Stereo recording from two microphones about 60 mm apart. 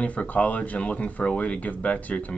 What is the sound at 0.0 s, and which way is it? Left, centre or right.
Speech, left.